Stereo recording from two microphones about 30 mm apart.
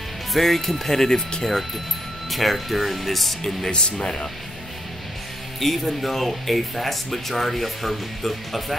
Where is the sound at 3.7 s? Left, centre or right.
Left.